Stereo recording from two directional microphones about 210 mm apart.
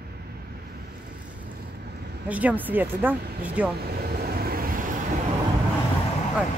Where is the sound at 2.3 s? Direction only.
5° right (ahead or behind).